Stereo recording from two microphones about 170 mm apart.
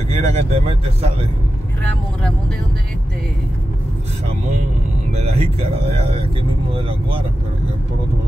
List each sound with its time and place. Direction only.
0.1 s speech: 40° right (ahead or behind)
5.1 s speech: 40° right (ahead or behind)